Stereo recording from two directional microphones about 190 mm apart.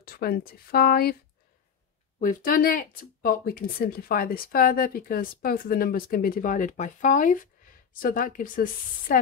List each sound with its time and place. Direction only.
0.0 s a sound: 50° left (ahead or behind)
0.7 s speech: 55° left (ahead or behind)
2.1 s speech: 45° left (ahead or behind)